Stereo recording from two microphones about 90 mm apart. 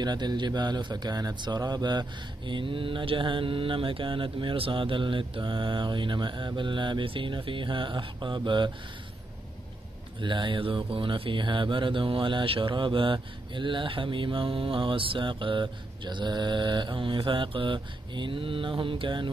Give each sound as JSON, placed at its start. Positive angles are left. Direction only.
{"t": 0.0, "sound": "speech", "side_deg": -50}
{"t": 10.2, "sound": "speech", "side_deg": -60}